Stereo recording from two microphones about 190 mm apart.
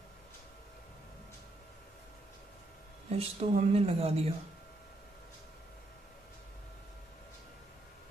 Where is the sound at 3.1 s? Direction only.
35° right (ahead or behind).